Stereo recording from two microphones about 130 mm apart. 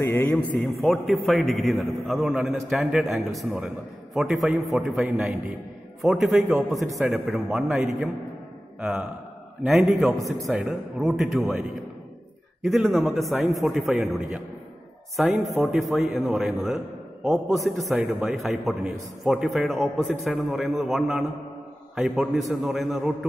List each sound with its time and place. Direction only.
0.0 s speech: 15° left (ahead or behind)
0.7 s a man's voice: centre (ahead or behind)
9.7 s a man's voice: centre (ahead or behind)
12.6 s a man's voice: centre (ahead or behind)